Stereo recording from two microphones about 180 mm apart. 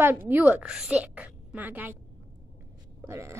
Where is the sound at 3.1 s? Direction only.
15° right (ahead or behind).